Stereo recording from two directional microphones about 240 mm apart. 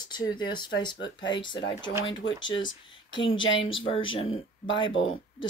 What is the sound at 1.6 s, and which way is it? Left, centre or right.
Speech, left.